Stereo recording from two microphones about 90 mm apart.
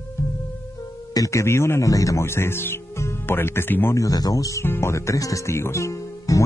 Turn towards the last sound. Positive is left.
turn(degrees=35)  # may be behind; listen again after turning